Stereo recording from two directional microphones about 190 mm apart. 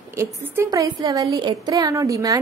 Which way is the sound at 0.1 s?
15° right (ahead or behind).